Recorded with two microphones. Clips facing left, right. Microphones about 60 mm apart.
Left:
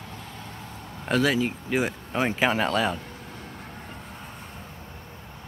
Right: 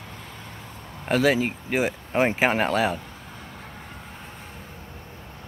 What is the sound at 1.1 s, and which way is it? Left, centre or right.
Speech, right.